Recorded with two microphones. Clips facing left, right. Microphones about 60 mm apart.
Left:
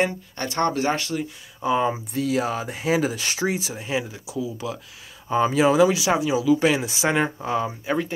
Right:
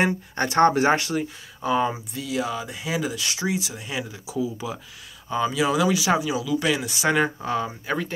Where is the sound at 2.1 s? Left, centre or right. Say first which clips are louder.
Left 4 dB; left.